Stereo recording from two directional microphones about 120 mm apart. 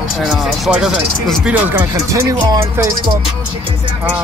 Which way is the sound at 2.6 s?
25° right (ahead or behind).